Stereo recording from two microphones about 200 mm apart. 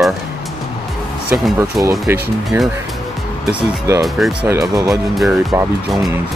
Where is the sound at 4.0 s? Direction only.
Centre (ahead or behind).